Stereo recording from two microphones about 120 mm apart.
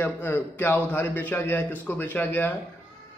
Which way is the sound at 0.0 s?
20° left (ahead or behind).